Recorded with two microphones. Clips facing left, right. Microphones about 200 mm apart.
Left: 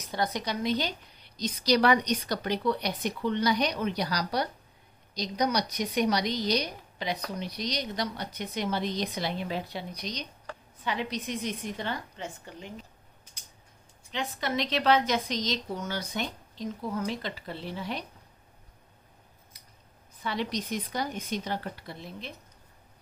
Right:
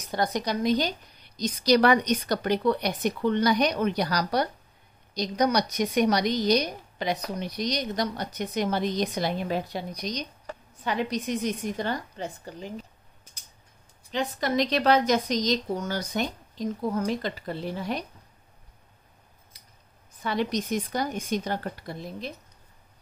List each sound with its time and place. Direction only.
0.1 s a woman's voice: 45° right (ahead or behind)
14.1 s a woman's voice: 40° right (ahead or behind)
20.2 s a woman's voice: 45° right (ahead or behind)